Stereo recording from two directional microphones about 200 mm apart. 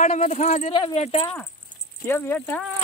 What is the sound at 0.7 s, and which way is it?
Speech, 25° left (ahead or behind).